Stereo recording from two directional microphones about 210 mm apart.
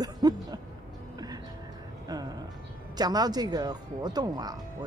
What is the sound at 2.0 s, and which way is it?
Music, 20° right (ahead or behind).